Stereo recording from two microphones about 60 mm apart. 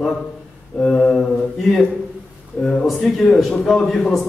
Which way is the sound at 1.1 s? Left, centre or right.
Centre.